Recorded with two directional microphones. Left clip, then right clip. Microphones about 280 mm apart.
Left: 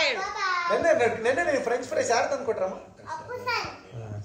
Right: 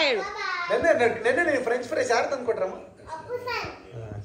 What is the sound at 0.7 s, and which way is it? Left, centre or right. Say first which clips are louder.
A woman's voice: right 2 dB; left.